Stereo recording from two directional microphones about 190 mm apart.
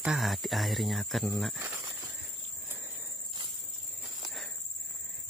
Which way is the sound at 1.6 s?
10° right (ahead or behind).